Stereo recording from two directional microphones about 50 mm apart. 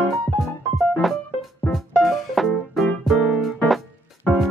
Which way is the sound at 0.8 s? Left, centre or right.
Centre.